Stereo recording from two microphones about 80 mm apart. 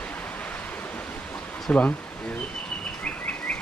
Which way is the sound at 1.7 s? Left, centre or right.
Centre.